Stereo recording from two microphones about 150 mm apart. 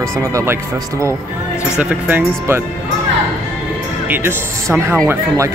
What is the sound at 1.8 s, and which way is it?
Speech, 10° right (ahead or behind).